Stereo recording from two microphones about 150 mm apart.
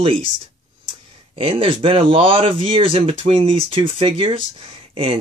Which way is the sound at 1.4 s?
35° right (ahead or behind).